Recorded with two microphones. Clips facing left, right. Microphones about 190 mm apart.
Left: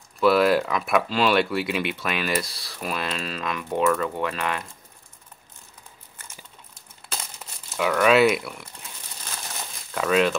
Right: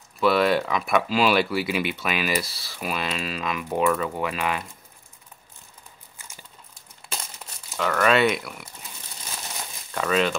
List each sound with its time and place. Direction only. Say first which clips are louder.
0.2 s speech: left 2 dB; centre (ahead or behind)
7.7 s speech: left 2 dB; 5° left (ahead or behind)
9.9 s speech: left 2 dB; centre (ahead or behind)